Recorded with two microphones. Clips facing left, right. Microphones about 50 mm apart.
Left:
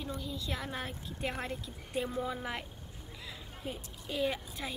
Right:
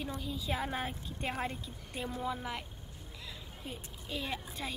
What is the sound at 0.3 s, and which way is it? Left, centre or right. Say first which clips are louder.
A woman's voice: right 3 dB; centre.